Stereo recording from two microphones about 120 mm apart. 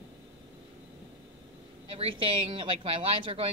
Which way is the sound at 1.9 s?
50° right (ahead or behind).